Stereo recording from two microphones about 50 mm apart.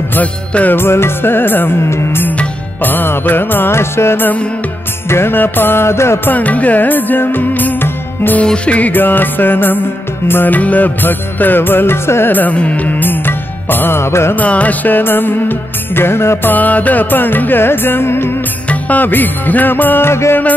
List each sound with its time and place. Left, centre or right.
0.5 s music: left
0.7 s music: left
1.8 s music: left
2.8 s music: left
3.7 s music: left
6.3 s music: left
8.6 s music: left
8.9 s music: left
12.4 s music: left
14.3 s music: left
16.4 s music: left
18.7 s music: left
20.1 s music: left